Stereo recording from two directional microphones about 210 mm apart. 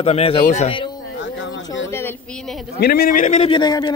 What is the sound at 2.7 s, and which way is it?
Speech, 50° left (ahead or behind).